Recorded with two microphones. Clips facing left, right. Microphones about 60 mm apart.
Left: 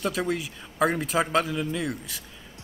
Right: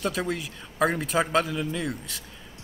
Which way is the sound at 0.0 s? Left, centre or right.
Centre.